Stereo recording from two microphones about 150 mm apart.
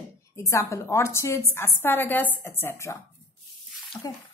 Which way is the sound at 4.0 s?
15° left (ahead or behind).